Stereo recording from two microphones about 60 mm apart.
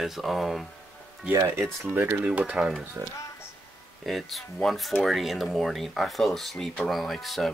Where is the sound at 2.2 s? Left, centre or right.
Right.